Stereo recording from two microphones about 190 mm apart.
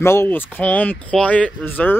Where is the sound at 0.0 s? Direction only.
15° left (ahead or behind).